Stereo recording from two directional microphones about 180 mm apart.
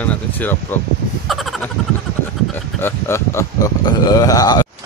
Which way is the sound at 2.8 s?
15° left (ahead or behind).